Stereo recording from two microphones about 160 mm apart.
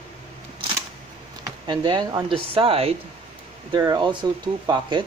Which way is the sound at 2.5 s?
35° right (ahead or behind).